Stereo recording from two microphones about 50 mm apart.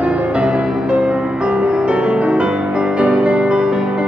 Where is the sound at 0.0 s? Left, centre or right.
Right.